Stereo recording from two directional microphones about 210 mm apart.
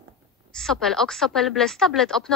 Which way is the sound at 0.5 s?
Centre (ahead or behind).